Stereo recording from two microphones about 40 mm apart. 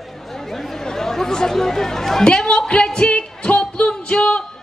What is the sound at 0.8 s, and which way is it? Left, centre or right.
Speech, centre.